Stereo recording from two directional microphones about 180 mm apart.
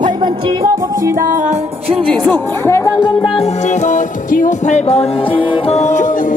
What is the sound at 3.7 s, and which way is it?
Music, 40° left (ahead or behind).